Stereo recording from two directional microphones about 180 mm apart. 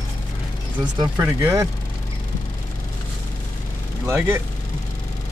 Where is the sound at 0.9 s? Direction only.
15° right (ahead or behind).